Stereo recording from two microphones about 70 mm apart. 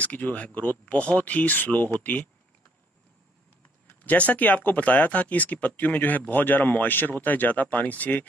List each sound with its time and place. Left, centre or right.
0.0 s speech: left
4.0 s speech: left